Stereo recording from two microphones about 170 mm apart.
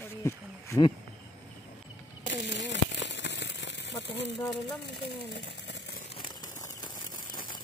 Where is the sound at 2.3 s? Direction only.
90° left.